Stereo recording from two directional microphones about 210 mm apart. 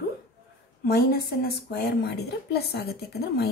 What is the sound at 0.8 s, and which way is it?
A woman's voice, 45° left (ahead or behind).